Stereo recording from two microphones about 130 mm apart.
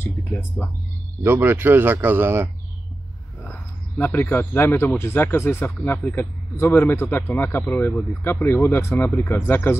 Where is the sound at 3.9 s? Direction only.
15° left (ahead or behind).